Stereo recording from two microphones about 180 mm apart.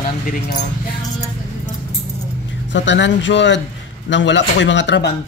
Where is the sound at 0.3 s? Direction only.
45° left (ahead or behind).